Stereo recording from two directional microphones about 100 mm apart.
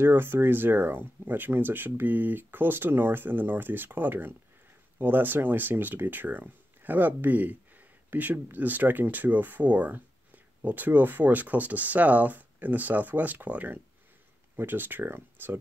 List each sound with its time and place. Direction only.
0.0 s speech: 20° right (ahead or behind)